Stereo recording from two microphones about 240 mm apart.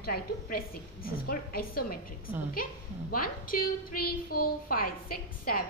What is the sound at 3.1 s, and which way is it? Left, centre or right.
Speech, left.